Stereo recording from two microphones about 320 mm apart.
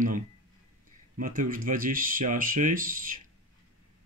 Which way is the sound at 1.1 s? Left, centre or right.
Right.